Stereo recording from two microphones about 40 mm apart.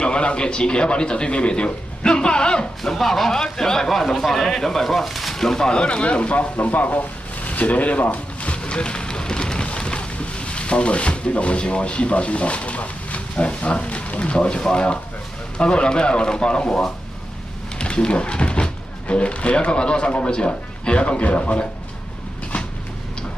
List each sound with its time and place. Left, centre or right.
0.0 s a man's voice: left
2.8 s speech: centre
5.7 s a man's voice: left
6.5 s a man's voice: left